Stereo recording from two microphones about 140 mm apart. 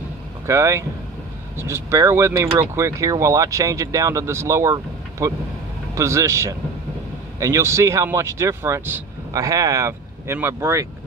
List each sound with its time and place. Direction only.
0.5 s speech: 20° right (ahead or behind)